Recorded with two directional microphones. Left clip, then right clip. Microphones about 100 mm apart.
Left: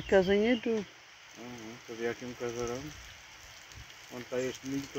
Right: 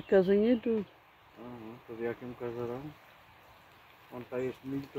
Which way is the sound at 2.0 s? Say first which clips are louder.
Left 2 dB; 5° left (ahead or behind).